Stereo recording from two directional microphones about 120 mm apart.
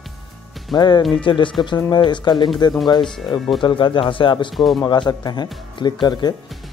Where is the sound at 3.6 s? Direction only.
45° left (ahead or behind).